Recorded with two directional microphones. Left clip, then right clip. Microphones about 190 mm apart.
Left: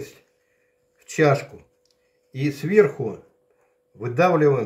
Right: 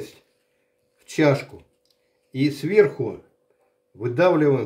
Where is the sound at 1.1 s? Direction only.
50° right (ahead or behind).